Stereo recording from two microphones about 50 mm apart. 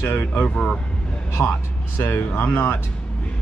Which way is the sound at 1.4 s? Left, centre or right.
Left.